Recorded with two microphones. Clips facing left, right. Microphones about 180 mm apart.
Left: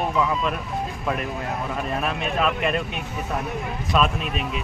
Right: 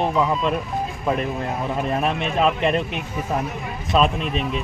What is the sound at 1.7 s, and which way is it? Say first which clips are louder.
Speech: right 6 dB; 25° right (ahead or behind).